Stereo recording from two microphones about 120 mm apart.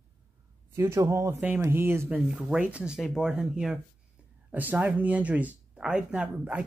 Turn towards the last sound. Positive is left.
turn(degrees=-10)  # may be behind; listen again after turning